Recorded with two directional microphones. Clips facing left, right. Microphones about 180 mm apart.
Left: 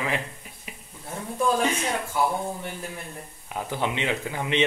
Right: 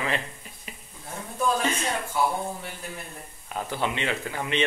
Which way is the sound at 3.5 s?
15° left (ahead or behind).